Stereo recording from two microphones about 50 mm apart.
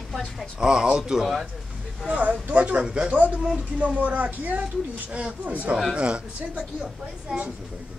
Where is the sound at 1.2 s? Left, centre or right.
Centre.